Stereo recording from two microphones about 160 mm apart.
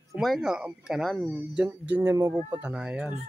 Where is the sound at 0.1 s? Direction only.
Centre (ahead or behind).